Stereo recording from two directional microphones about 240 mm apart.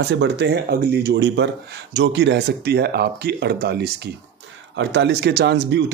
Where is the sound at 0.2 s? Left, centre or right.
Right.